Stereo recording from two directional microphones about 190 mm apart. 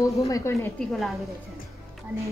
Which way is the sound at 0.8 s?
Centre (ahead or behind).